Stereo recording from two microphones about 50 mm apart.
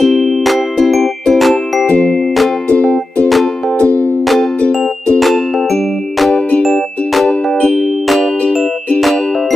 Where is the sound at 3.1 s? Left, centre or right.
Centre.